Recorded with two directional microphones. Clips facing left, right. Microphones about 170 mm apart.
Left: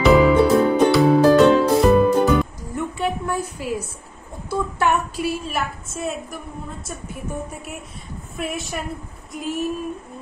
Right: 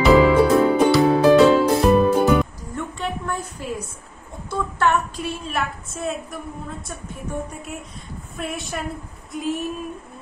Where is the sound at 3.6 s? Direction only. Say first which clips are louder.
Left 3 dB; 5° left (ahead or behind).